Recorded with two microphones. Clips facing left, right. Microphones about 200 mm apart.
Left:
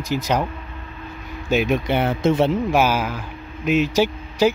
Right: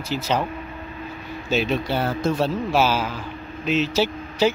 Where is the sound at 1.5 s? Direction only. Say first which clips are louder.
Left 3 dB; 15° left (ahead or behind).